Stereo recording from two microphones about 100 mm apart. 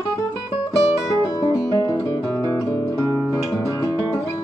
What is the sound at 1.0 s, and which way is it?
Music, 35° left (ahead or behind).